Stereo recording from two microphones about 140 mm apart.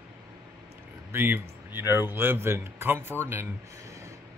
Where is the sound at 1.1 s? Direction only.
15° right (ahead or behind).